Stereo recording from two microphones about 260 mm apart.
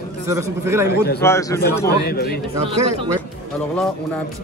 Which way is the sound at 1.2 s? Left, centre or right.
Centre.